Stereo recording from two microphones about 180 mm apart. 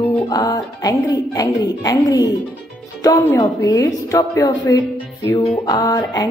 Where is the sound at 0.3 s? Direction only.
20° left (ahead or behind).